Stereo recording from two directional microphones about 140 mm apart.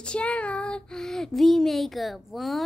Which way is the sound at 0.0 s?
5° left (ahead or behind).